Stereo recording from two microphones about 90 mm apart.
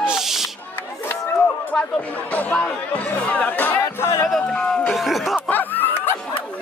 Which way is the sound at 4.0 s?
30° left (ahead or behind).